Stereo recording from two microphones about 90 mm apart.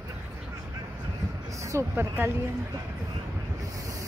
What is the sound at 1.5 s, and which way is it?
Speech, 35° right (ahead or behind).